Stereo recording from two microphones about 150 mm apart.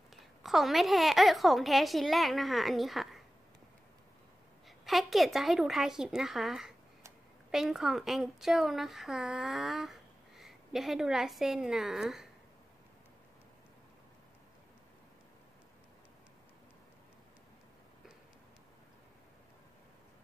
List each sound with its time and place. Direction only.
0.1 s a woman's voice: centre (ahead or behind)
4.6 s a woman's voice: centre (ahead or behind)